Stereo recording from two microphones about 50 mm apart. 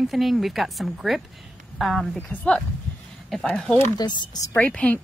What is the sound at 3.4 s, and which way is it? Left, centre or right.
Speech, centre.